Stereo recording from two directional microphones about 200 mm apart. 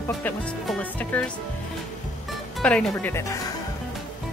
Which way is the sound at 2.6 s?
5° left (ahead or behind).